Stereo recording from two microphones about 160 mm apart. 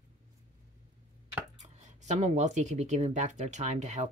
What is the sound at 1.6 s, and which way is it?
Speech, 45° right (ahead or behind).